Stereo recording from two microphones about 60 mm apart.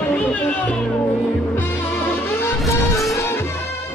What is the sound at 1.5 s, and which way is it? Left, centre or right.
Music, left.